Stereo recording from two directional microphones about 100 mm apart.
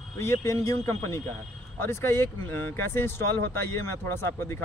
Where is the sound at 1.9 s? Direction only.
25° left (ahead or behind).